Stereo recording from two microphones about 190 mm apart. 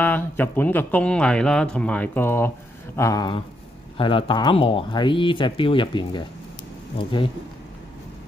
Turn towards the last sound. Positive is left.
turn(degrees=25)  # may be behind; listen again after turning